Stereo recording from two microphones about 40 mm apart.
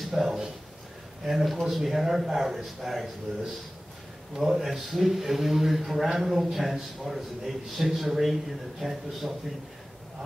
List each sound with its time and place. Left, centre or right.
0.0 s a man's voice: centre
4.4 s a man's voice: centre